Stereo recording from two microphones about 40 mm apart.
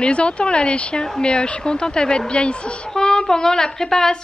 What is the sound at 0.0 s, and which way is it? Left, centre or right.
A woman's voice, left.